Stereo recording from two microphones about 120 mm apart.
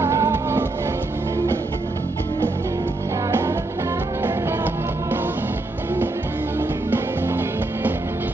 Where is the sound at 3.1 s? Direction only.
25° right (ahead or behind).